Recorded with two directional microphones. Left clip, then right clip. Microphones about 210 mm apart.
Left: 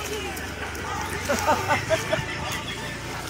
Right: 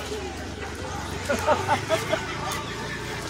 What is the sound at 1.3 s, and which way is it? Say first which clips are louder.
Vehicle: even; 50° left (ahead or behind).